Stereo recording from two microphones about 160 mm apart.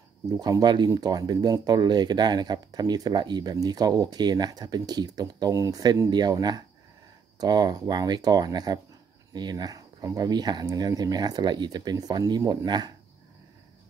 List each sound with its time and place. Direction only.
0.4 s speech: 25° right (ahead or behind)